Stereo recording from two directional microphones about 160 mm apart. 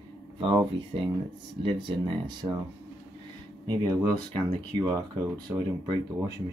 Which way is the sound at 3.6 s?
25° right (ahead or behind).